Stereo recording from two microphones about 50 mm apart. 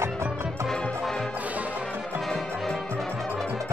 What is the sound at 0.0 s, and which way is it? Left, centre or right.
Music, right.